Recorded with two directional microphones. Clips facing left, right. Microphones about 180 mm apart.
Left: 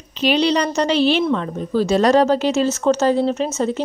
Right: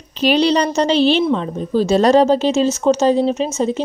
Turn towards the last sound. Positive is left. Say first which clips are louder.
# right 2 dB
turn(degrees=-20)  # may be behind; listen again after turning